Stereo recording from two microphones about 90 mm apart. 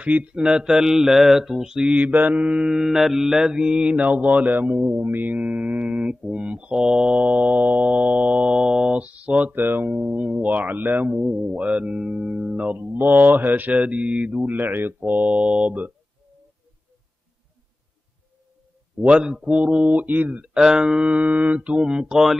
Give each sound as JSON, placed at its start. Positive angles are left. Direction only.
{"t": 0.0, "sound": "speech", "side_deg": -15}
{"t": 18.9, "sound": "speech", "side_deg": -10}